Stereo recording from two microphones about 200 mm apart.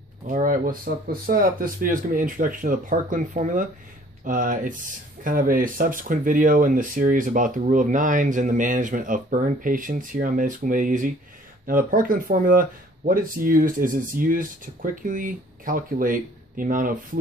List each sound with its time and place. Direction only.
0.3 s speech: 40° right (ahead or behind)